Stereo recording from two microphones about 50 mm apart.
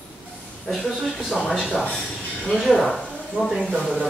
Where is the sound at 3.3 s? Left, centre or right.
Centre.